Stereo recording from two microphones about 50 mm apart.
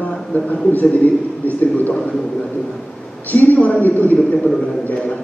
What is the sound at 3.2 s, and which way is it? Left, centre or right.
Speech, left.